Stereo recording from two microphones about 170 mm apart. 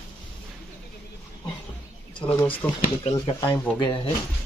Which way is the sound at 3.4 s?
20° left (ahead or behind).